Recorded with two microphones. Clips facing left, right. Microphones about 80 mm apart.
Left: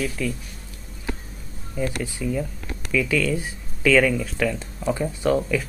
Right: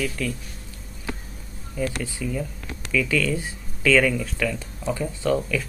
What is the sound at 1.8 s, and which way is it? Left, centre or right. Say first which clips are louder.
Speech: left 1 dB; centre.